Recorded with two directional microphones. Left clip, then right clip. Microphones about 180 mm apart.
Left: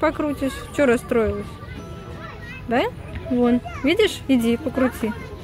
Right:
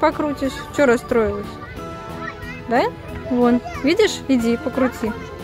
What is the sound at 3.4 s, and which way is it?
Fowl, 20° right (ahead or behind).